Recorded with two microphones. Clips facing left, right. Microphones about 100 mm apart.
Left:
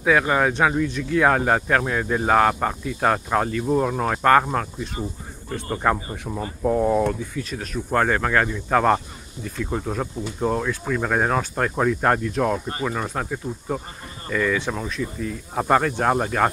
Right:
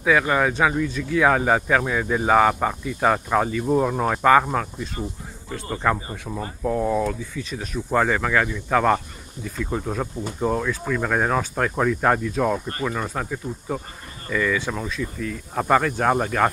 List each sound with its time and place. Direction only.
0.0 s speech: 5° left (ahead or behind)
5.8 s speech: 10° left (ahead or behind)
6.3 s speech: 5° right (ahead or behind)
6.6 s speech: 5° left (ahead or behind)
14.3 s speech: 5° left (ahead or behind)